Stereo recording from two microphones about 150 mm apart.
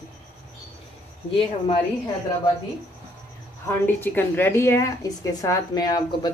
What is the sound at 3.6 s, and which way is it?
A woman's voice, 15° left (ahead or behind).